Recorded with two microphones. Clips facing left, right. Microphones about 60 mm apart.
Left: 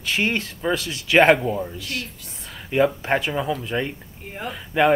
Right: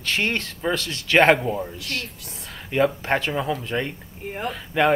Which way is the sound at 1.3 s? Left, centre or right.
Centre.